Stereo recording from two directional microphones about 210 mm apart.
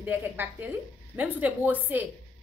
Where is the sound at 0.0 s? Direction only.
10° right (ahead or behind).